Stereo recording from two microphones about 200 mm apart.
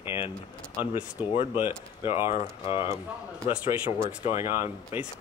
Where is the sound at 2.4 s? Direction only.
30° left (ahead or behind).